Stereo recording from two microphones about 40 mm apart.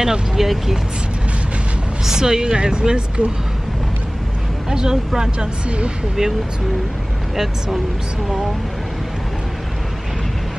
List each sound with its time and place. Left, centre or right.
0.0 s speech: centre
2.0 s speech: centre
4.6 s speech: centre